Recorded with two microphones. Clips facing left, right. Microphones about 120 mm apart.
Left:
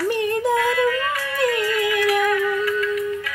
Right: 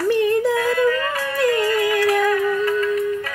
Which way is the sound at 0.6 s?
40° right (ahead or behind).